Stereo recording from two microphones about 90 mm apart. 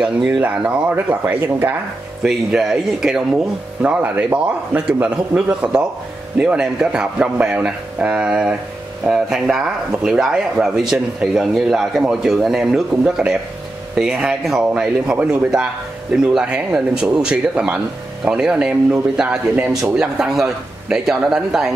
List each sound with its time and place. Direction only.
0.0 s a man's voice: 10° right (ahead or behind)
2.2 s a man's voice: 5° right (ahead or behind)